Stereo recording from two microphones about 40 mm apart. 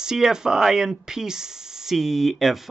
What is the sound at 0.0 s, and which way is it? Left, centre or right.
Speech, centre.